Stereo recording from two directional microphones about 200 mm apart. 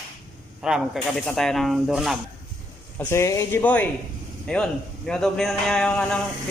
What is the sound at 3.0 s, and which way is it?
Speech, 15° left (ahead or behind).